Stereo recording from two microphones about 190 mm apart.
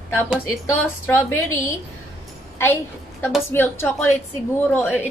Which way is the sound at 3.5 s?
10° left (ahead or behind).